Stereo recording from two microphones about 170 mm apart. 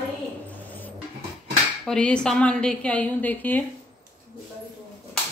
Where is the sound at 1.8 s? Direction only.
5° left (ahead or behind).